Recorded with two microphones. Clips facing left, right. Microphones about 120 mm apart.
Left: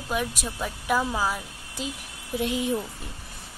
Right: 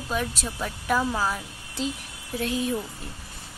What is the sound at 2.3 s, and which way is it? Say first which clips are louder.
Speech: left 1 dB; 20° left (ahead or behind).